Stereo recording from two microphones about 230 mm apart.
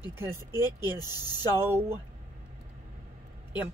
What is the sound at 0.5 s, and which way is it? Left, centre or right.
Speech, centre.